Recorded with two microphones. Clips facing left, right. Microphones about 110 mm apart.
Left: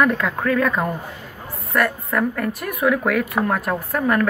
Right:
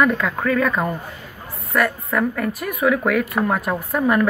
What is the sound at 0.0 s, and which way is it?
A woman's voice, centre (ahead or behind).